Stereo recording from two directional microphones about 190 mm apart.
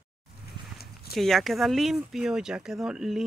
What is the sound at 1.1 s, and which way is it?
Speech, centre (ahead or behind).